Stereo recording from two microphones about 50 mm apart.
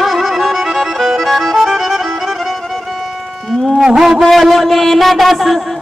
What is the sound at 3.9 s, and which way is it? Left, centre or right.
A man's voice, centre.